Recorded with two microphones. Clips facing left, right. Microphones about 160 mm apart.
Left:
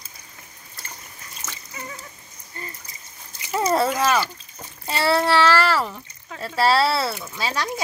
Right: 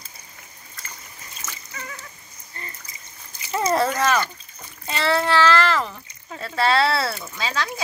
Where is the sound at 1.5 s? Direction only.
20° left (ahead or behind).